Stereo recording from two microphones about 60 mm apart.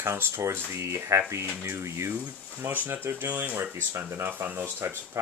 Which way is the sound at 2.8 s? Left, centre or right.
Right.